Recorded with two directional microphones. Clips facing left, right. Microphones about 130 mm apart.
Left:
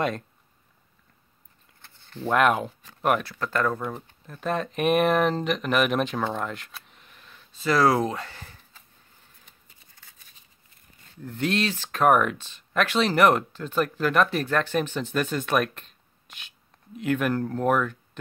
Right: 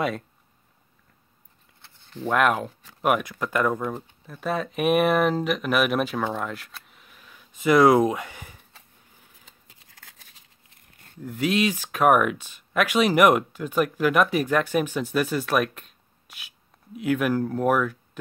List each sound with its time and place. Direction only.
2.2 s speech: centre (ahead or behind)
9.5 s a sound: 90° right
11.2 s speech: 10° right (ahead or behind)